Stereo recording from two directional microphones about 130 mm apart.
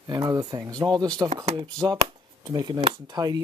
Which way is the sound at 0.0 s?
30° right (ahead or behind).